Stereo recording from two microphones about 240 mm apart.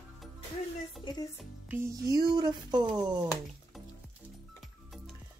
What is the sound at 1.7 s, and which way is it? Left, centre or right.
Speech, centre.